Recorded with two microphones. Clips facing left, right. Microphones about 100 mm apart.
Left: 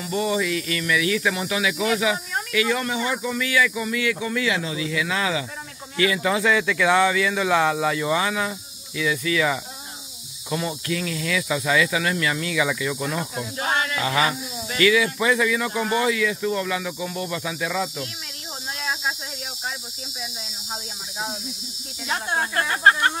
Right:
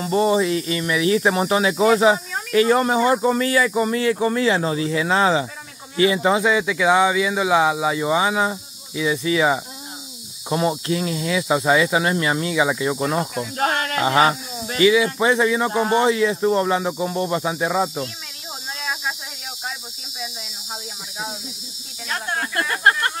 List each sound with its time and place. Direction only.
0.0 s speech: 35° right (ahead or behind)
13.4 s snake: 50° right (ahead or behind)
14.8 s speech: 25° right (ahead or behind)
22.1 s speech: 20° left (ahead or behind)